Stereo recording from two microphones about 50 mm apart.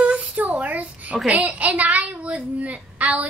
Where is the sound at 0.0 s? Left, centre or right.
Right.